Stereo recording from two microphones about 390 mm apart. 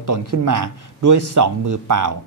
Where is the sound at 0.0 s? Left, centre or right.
Right.